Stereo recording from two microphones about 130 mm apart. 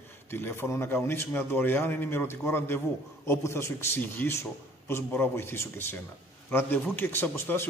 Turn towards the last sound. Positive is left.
turn(degrees=15)  # may be behind; listen again after turning